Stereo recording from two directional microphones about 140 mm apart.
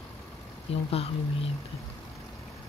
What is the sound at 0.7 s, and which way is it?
Speech, 45° left (ahead or behind).